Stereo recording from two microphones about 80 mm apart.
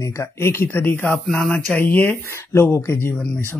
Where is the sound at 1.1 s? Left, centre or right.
Centre; by 3.3 s left.